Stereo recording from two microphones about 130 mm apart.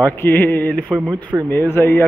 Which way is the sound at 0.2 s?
15° left (ahead or behind).